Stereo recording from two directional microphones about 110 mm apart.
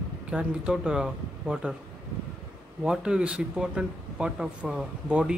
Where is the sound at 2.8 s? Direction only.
5° right (ahead or behind).